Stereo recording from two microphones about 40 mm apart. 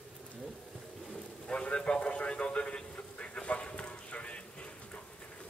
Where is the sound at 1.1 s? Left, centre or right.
Left.